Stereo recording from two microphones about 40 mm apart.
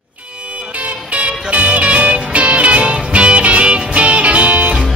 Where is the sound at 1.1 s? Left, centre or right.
Right.